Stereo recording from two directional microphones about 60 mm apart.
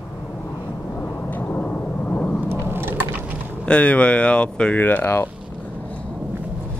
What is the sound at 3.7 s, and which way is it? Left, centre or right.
Speech, left.